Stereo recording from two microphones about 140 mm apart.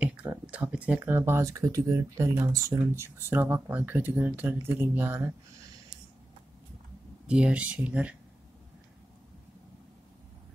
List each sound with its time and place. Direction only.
0.0 s speech: 10° right (ahead or behind)
7.2 s speech: 10° right (ahead or behind)